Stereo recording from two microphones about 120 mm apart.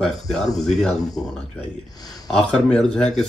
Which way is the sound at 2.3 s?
5° left (ahead or behind).